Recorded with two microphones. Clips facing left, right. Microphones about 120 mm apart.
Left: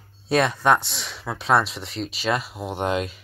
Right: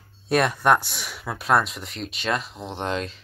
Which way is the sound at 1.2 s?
Centre (ahead or behind).